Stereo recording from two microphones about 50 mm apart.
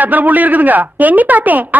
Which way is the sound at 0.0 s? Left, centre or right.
Right.